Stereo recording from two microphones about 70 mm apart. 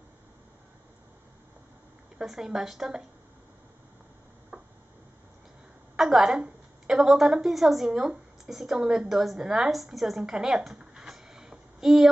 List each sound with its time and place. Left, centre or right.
2.1 s a woman's voice: centre
4.5 s a sound: right
5.9 s a woman's voice: centre